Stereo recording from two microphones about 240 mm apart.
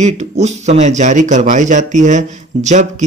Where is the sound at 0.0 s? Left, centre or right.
Right.